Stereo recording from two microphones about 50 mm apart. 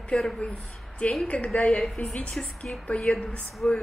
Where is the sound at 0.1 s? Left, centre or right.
Left.